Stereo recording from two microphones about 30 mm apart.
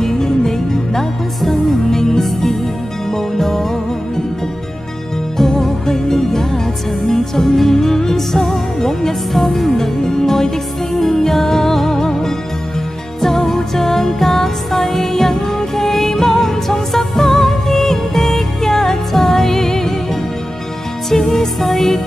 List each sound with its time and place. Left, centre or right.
0.0 s music: centre
5.4 s music: centre
21.1 s music: centre